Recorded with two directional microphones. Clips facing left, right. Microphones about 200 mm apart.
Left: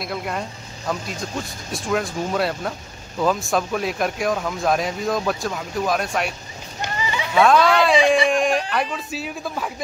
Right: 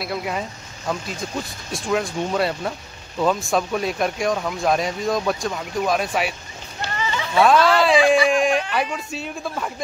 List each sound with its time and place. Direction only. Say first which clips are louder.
0.0 s speech: right 1 dB; centre (ahead or behind)
6.8 s a sound: even; 15° left (ahead or behind)
7.3 s speech: even; centre (ahead or behind)